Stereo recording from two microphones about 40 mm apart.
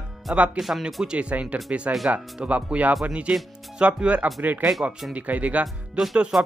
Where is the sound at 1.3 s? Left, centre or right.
Right.